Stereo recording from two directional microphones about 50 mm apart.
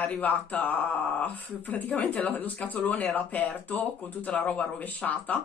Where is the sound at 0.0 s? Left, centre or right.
Left.